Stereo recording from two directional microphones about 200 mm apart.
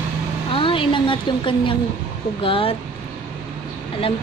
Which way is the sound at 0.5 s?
25° left (ahead or behind).